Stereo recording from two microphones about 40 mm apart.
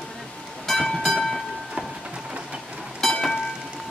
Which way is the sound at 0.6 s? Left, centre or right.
Centre.